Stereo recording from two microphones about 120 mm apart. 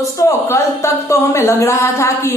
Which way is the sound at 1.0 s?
20° left (ahead or behind).